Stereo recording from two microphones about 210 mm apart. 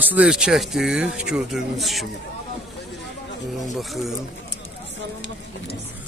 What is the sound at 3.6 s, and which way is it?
Speech, centre (ahead or behind).